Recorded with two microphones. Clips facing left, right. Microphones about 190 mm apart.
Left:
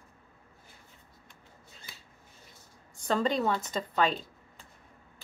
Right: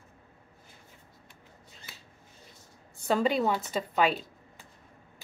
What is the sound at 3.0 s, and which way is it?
Speech, 10° right (ahead or behind).